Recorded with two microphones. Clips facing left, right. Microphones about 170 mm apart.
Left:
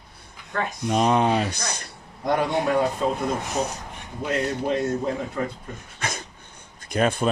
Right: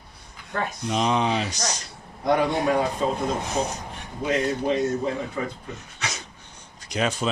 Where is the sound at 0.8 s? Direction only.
50° left (ahead or behind).